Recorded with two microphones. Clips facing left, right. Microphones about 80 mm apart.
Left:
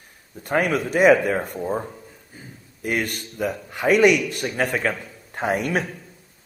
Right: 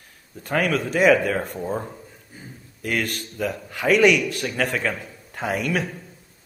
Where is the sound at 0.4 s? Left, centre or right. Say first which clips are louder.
Left 1 dB; centre.